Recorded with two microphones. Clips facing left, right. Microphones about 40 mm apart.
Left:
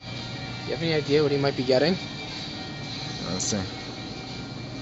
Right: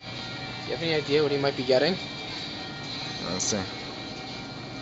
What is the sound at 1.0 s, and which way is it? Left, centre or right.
Speech, centre.